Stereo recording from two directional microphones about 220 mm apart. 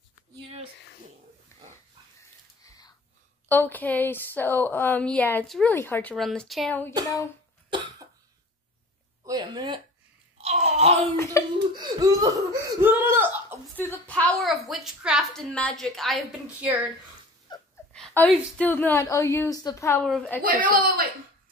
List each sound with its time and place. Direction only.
3.4 s a woman's voice: 10° left (ahead or behind)
7.7 s cough: 20° right (ahead or behind)
9.2 s a sound: 20° right (ahead or behind)
10.3 s groan: 30° right (ahead or behind)
11.4 s laughter: 15° left (ahead or behind)
11.7 s laughter: 20° right (ahead or behind)
13.7 s a sound: 10° left (ahead or behind)
17.5 s a sound: 20° left (ahead or behind)
17.9 s a woman's voice: 5° left (ahead or behind)
20.8 s speech: 40° right (ahead or behind)